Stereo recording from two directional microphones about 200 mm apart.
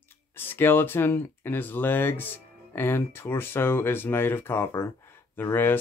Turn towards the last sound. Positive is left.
turn(degrees=10)  # may be behind; listen again after turning